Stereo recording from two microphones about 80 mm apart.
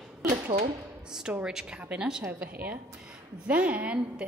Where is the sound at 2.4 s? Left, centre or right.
Right.